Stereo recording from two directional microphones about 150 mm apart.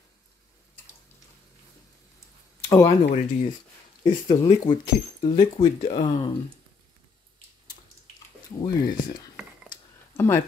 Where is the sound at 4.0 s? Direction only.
30° left (ahead or behind); by 6.2 s 45° left (ahead or behind).